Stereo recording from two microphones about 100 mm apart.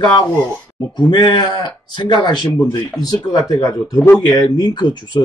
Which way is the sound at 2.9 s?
40° left (ahead or behind).